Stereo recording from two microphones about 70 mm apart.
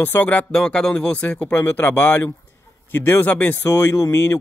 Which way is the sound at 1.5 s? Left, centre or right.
Left.